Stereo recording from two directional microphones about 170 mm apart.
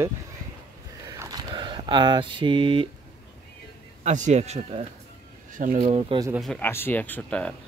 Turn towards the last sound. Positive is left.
turn(degrees=5)  # may be behind; listen again after turning